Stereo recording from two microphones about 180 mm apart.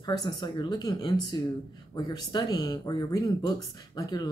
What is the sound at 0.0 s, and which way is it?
Speech, 25° left (ahead or behind).